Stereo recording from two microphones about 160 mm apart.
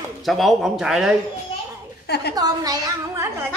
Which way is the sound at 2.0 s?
90° left.